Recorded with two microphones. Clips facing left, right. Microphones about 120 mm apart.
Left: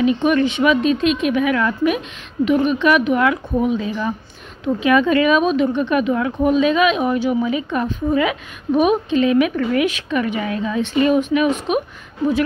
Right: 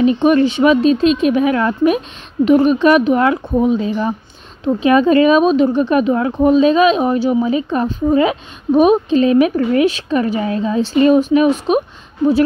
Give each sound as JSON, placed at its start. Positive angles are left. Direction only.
{"t": 0.0, "sound": "a woman's voice", "side_deg": -35}